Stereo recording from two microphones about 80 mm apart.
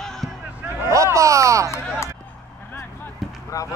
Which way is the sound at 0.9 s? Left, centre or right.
Right.